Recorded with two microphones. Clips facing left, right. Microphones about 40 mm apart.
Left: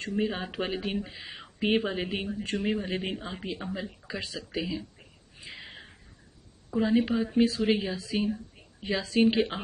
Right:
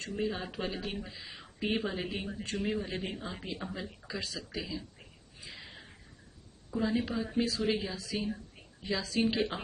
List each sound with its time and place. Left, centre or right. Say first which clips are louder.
0.2 s speech: left 3 dB; left; by 3.9 s centre
4.1 s speech: left 3 dB; left
5.5 s a sound: left 5 dB; left
6.7 s speech: left 6 dB; left